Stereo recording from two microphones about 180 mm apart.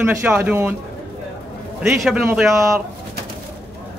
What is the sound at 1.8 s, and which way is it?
Speech, 5° right (ahead or behind).